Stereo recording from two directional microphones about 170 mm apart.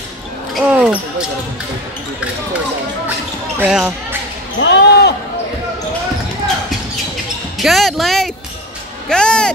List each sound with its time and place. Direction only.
0.6 s basketball bounce: 5° right (ahead or behind)
3.5 s speech: 10° right (ahead or behind)
4.6 s basketball bounce: 90° left; by 5.1 s 75° left (ahead or behind)
7.5 s basketball bounce: centre (ahead or behind)
9.1 s a sound: 5° left (ahead or behind)